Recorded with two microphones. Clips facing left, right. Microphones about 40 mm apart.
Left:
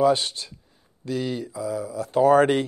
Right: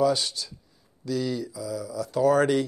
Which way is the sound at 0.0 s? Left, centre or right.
Left.